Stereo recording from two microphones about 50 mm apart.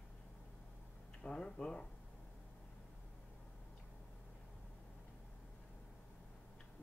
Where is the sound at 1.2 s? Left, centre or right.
Centre.